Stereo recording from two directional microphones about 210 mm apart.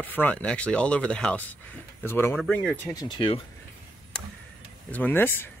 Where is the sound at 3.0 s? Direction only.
20° left (ahead or behind).